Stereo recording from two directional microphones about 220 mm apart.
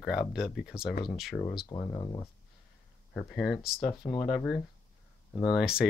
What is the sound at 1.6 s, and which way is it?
Speech, 20° left (ahead or behind).